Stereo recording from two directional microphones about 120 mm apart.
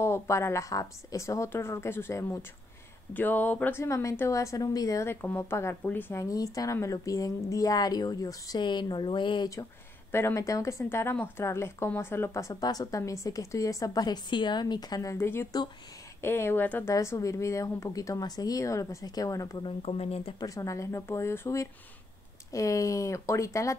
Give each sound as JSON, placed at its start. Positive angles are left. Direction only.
{"t": 0.0, "sound": "speech", "side_deg": 20}
{"t": 6.2, "sound": "a woman's voice", "side_deg": 30}
{"t": 10.1, "sound": "speech", "side_deg": 25}
{"t": 16.9, "sound": "speech", "side_deg": 25}
{"t": 19.6, "sound": "speech", "side_deg": 55}
{"t": 20.3, "sound": "speech", "side_deg": 25}